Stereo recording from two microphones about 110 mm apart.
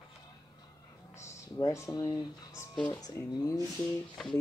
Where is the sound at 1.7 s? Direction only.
30° left (ahead or behind).